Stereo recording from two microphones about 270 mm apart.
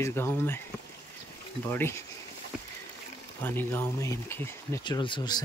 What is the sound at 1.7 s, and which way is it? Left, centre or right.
Speech, centre.